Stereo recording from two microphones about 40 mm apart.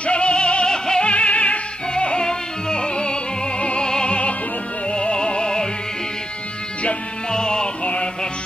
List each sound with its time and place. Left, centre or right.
0.0 s music: left
7.2 s music: centre